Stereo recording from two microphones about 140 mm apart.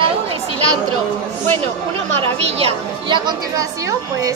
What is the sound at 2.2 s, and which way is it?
Speech, 45° right (ahead or behind).